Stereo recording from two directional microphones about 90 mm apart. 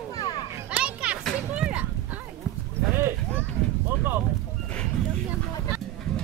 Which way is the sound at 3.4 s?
25° right (ahead or behind).